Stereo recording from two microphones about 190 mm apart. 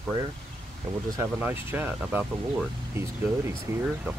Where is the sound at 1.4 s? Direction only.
10° right (ahead or behind).